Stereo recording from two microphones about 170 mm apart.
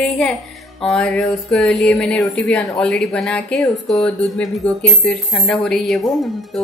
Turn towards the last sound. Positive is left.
turn(degrees=0)  # may be behind; listen again after turning